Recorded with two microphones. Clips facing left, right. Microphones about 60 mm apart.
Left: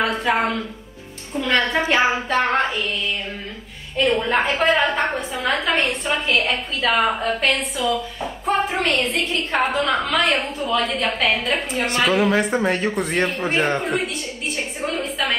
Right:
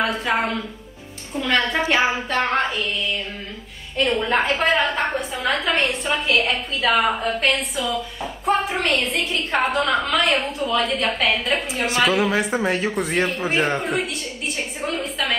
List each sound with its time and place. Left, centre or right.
0.0 s a woman's voice: centre
3.9 s a woman's voice: centre